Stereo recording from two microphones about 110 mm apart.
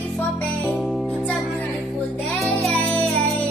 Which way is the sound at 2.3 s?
Centre (ahead or behind).